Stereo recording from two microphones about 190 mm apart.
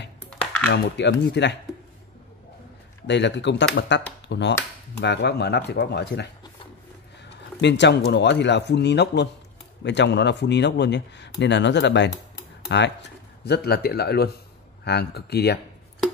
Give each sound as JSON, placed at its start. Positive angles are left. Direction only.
{"t": 0.2, "sound": "a sound", "side_deg": 5}
{"t": 0.7, "sound": "speech", "side_deg": 65}
{"t": 3.1, "sound": "speech", "side_deg": 65}